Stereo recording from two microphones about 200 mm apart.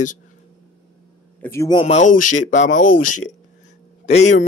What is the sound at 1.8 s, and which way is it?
Speech, 35° left (ahead or behind).